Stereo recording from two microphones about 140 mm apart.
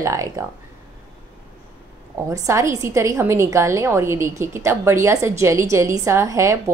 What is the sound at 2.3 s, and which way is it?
A woman's voice, 20° right (ahead or behind).